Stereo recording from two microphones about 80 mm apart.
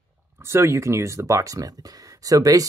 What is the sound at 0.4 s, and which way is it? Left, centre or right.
Speech, right.